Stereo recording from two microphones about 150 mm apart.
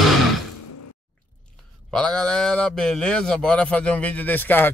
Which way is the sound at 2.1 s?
5° left (ahead or behind).